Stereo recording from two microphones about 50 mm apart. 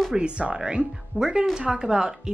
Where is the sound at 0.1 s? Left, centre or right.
Right.